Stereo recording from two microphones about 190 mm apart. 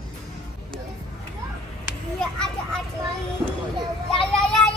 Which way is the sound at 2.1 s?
5° left (ahead or behind).